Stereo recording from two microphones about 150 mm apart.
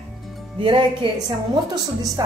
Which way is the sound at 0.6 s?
35° right (ahead or behind).